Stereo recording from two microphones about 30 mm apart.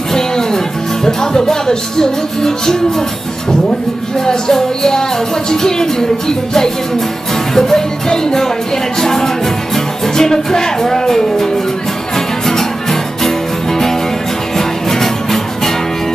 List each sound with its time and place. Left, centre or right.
0.1 s music: centre
4.3 s music: centre
5.5 s speech: centre
7.5 s music: centre
9.0 s speech: centre
14.6 s music: centre